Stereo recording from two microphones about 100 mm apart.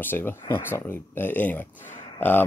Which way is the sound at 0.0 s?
20° left (ahead or behind).